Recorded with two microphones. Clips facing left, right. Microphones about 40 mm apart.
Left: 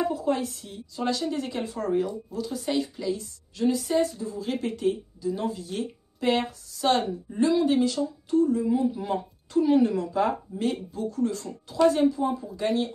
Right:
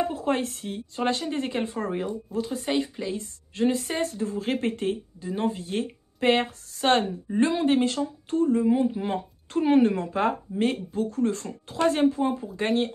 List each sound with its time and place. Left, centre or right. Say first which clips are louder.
0.0 s speech: even; right